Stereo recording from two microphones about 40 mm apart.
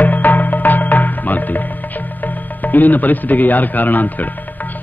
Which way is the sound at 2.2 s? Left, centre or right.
Left.